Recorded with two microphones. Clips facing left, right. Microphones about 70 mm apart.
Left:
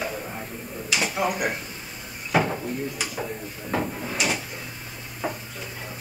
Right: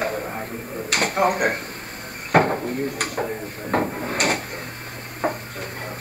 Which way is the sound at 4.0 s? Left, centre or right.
Right.